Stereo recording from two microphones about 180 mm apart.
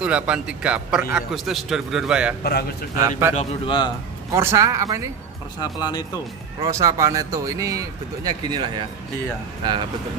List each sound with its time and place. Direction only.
0.0 s a man's voice: 5° right (ahead or behind)
2.4 s a man's voice: 60° left (ahead or behind)
3.1 s a man's voice: 15° right (ahead or behind)
3.3 s a man's voice: 25° left (ahead or behind)
4.3 s a man's voice: 15° right (ahead or behind)
5.6 s a man's voice: 20° left (ahead or behind)
6.7 s speech: 20° right (ahead or behind)